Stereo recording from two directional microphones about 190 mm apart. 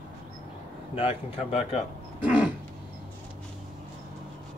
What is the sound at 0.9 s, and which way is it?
Speech, 30° left (ahead or behind).